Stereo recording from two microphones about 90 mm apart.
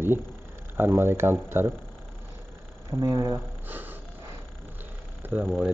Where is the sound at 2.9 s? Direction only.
45° right (ahead or behind).